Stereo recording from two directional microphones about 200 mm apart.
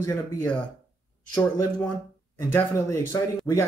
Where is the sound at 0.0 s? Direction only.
15° left (ahead or behind).